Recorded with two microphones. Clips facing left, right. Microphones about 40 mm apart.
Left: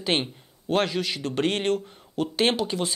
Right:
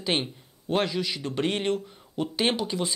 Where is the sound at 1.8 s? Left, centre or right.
Centre.